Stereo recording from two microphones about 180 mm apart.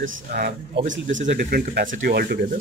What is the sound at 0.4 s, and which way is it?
Speech, 45° right (ahead or behind).